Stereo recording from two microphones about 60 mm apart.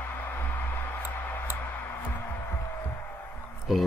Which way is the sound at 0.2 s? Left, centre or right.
Left.